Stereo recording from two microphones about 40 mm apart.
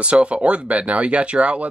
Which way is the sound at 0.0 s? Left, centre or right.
Right.